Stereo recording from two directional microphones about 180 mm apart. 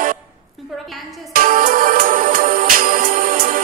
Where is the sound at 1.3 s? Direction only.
50° right (ahead or behind).